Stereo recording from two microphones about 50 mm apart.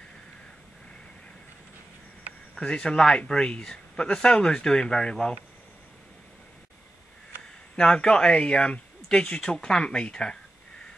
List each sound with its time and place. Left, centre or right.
2.6 s speech: centre
7.7 s speech: centre